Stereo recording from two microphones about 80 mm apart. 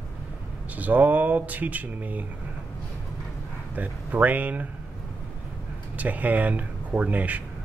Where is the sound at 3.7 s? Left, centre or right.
Centre.